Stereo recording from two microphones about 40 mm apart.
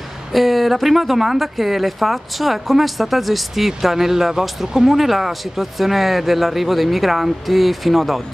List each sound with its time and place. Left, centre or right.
0.3 s speech: centre